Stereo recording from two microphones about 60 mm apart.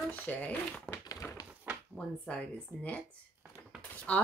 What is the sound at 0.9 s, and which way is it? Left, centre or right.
Tap, centre.